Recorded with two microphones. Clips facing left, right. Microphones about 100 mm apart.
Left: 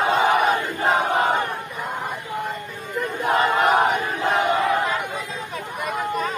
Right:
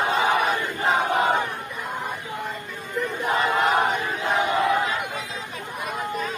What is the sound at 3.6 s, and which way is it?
Battle cry, 50° left (ahead or behind).